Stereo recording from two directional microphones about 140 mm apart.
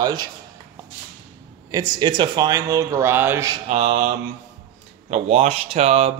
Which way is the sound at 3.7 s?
55° right (ahead or behind).